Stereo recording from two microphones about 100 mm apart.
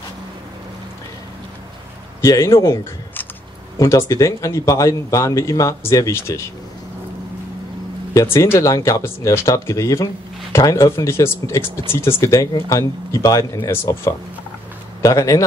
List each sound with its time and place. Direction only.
2.2 s speech: 30° left (ahead or behind)
8.1 s speech: 30° left (ahead or behind)
15.0 s speech: 30° left (ahead or behind)